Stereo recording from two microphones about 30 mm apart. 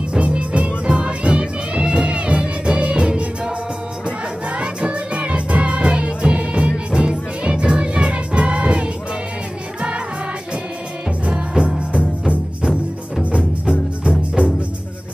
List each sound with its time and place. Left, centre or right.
0.2 s music: right
1.7 s music: right
11.2 s music: right
14.0 s music: right